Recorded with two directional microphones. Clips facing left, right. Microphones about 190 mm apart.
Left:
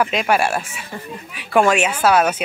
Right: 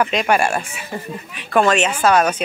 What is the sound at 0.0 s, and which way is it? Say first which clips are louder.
Speech: right 1 dB; 5° left (ahead or behind).